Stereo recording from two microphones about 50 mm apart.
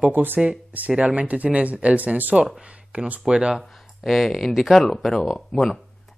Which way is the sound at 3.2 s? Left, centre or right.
Centre.